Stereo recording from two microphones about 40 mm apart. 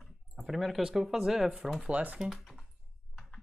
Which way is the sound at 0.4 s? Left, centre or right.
Centre.